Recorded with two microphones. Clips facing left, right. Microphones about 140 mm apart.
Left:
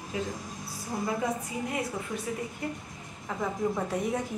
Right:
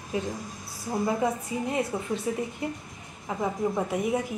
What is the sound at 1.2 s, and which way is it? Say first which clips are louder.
A woman's voice: right 4 dB; 25° right (ahead or behind).